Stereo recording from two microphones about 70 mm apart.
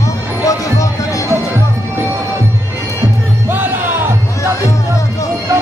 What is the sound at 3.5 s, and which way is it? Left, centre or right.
Music, right.